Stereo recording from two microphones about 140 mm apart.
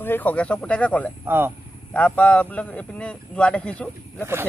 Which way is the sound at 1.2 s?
15° right (ahead or behind).